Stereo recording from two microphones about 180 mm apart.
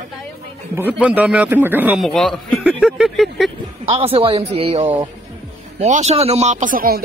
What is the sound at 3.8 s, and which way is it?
A man's voice, 30° right (ahead or behind).